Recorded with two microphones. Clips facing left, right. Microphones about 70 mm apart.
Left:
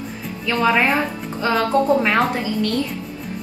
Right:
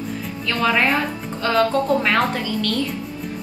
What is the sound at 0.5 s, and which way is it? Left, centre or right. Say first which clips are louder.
A woman's voice: left 2 dB; centre.